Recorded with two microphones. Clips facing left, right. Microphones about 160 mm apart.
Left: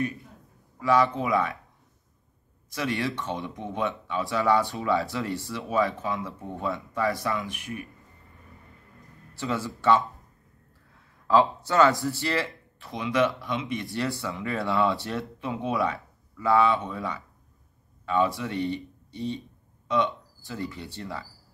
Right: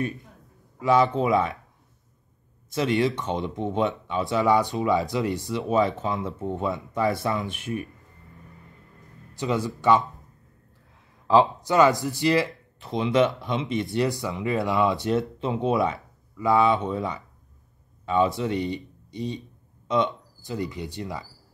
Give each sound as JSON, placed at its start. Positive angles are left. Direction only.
{"t": 0.7, "sound": "speech", "side_deg": -20}
{"t": 2.7, "sound": "speech", "side_deg": -20}
{"t": 9.3, "sound": "a man's voice", "side_deg": -15}
{"t": 11.2, "sound": "speech", "side_deg": -15}